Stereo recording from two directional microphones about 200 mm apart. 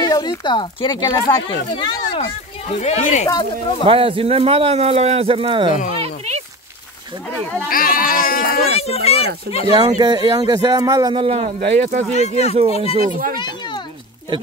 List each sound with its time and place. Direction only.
0.0 s speech: 20° left (ahead or behind); by 3.3 s 35° left (ahead or behind)
3.8 s a man's voice: 25° right (ahead or behind)
6.0 s a sound: 35° right (ahead or behind)
7.7 s speech: 45° left (ahead or behind)
8.7 s speech: 30° left (ahead or behind)
9.9 s a man's voice: 20° right (ahead or behind)
12.2 s speech: 30° left (ahead or behind)
13.0 s speech: 40° right (ahead or behind)